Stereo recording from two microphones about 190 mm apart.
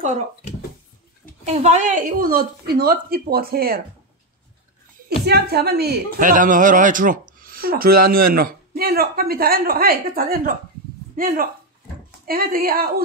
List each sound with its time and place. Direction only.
1.4 s a man's voice: 35° right (ahead or behind); by 3.8 s 50° right (ahead or behind)
5.2 s a man's voice: 60° right (ahead or behind)